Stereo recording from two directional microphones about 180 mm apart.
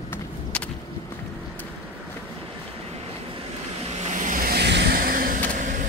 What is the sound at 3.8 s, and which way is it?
Vehicle, 40° right (ahead or behind).